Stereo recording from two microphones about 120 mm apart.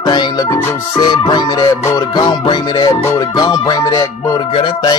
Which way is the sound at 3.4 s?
35° left (ahead or behind).